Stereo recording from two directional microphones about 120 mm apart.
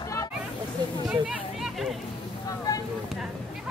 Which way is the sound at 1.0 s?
5° right (ahead or behind).